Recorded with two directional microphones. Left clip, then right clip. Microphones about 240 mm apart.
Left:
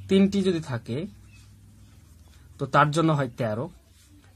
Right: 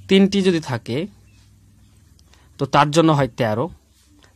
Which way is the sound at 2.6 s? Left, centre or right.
Right.